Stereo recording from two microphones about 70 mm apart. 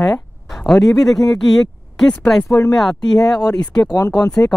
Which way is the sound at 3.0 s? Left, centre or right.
Left.